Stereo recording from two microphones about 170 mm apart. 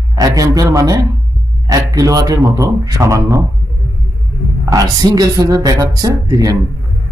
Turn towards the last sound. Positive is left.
turn(degrees=-20)  # may be behind; listen again after turning